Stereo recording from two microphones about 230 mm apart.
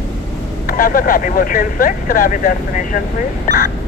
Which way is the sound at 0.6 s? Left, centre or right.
Left.